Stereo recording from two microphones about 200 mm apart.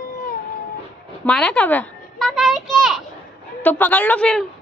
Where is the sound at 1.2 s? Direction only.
5° left (ahead or behind).